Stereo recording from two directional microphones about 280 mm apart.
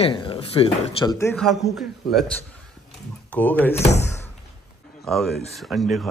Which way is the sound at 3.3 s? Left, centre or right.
Centre.